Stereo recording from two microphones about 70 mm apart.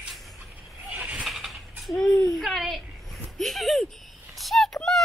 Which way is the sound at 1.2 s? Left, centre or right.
Centre.